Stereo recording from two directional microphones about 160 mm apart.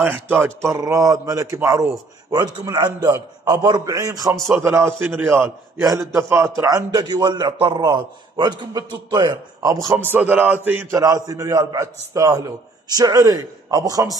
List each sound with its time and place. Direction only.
0.0 s a man's voice: 15° right (ahead or behind)
10.1 s a man's voice: 10° right (ahead or behind)
11.0 s a man's voice: 20° right (ahead or behind)